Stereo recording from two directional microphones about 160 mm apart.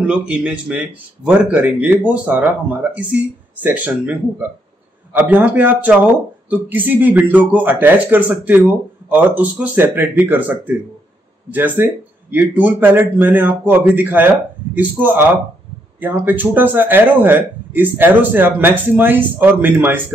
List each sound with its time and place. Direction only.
0.0 s a man's voice: 5° right (ahead or behind)